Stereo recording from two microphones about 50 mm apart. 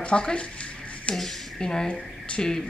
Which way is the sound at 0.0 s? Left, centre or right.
Left.